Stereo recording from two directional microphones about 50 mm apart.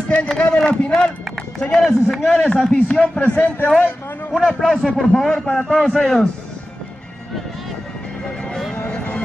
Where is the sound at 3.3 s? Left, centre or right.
Left.